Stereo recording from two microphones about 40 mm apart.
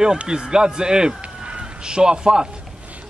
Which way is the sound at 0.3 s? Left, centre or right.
Centre.